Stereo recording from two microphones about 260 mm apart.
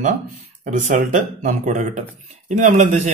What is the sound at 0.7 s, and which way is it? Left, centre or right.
Speech, right.